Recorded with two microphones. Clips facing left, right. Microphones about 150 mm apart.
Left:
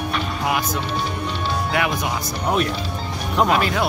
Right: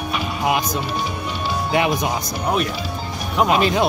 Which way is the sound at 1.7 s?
25° right (ahead or behind).